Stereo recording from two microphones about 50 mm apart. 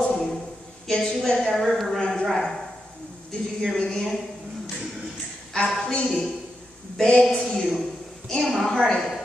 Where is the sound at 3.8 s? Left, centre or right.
Centre.